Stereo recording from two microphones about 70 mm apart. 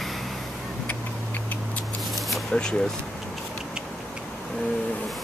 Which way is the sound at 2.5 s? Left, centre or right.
Centre.